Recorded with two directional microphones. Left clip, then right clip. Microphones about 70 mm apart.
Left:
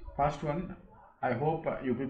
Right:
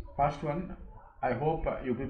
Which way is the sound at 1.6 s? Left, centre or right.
Centre.